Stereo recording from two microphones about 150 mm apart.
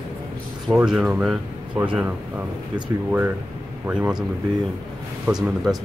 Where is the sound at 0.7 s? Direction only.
5° right (ahead or behind).